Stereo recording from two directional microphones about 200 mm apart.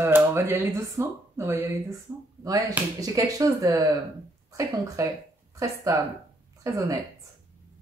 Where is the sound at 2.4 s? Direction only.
15° right (ahead or behind).